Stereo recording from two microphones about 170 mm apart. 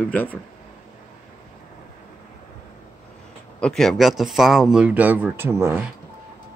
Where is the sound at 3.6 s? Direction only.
Centre (ahead or behind); by 5.8 s 15° right (ahead or behind).